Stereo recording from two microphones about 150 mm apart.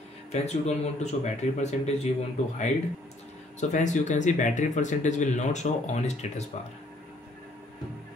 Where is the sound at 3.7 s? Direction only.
55° left (ahead or behind).